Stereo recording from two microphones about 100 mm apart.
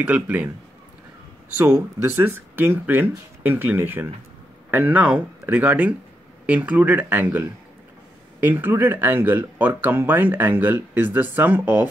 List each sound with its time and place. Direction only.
0.0 s speech: 15° right (ahead or behind)
2.0 s speech: 20° right (ahead or behind)